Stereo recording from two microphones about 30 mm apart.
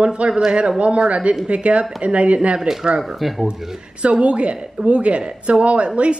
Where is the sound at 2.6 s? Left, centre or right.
Centre.